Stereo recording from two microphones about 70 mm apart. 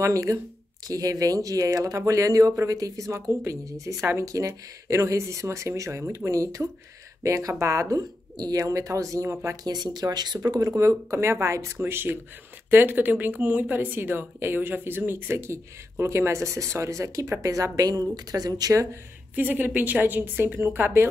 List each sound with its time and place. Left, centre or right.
0.0 s a woman's voice: right
8.4 s a woman's voice: right
9.3 s speech: right
9.7 s speech: right
10.4 s speech: right
10.8 s a woman's voice: right
11.8 s a woman's voice: right
17.7 s speech: right
19.3 s a woman's voice: right